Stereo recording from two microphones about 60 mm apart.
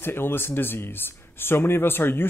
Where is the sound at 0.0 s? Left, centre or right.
Left.